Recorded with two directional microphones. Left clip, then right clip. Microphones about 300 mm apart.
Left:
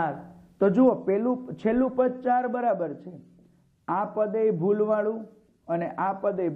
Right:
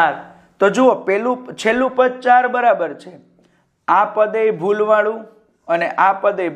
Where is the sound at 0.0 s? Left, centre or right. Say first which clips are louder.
Right 13 dB; centre.